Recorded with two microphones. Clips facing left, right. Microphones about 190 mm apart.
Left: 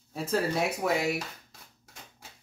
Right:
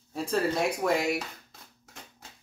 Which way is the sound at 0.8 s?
5° left (ahead or behind).